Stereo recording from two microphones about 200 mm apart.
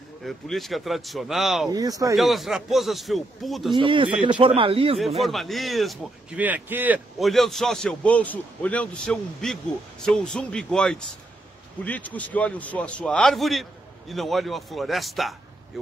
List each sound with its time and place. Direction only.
0.2 s speech: centre (ahead or behind)
1.7 s speech: 20° right (ahead or behind)
2.1 s speech: centre (ahead or behind)
3.7 s a man's voice: 25° right (ahead or behind)
4.9 s speech: centre (ahead or behind)